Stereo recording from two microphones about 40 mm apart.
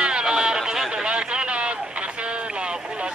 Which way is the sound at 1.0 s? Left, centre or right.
Right.